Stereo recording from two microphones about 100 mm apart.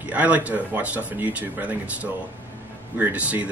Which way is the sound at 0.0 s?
15° right (ahead or behind).